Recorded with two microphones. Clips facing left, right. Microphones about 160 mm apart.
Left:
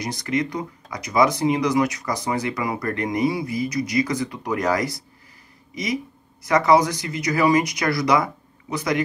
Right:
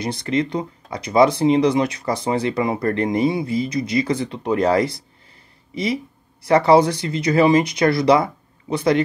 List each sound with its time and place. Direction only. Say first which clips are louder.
0.0 s speech: right 3 dB; 30° right (ahead or behind)